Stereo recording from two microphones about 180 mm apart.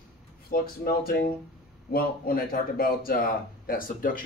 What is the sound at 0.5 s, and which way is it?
Speech, 55° left (ahead or behind).